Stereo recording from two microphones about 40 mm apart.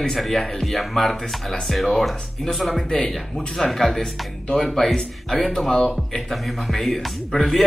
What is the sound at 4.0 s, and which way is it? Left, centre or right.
Speech, centre.